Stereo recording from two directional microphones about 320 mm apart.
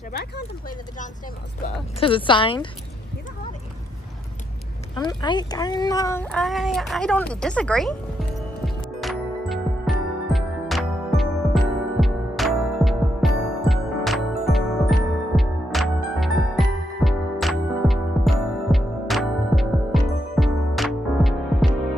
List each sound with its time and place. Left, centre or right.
1.6 s speech: centre
4.9 s speech: centre
8.6 s music: centre